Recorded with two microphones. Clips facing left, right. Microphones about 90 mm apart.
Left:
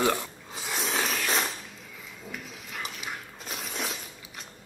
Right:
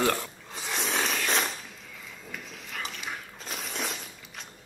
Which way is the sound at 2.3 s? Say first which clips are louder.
Left 1 dB; 5° left (ahead or behind).